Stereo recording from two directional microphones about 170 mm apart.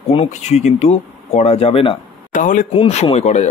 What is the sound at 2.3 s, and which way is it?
Speech, 50° left (ahead or behind).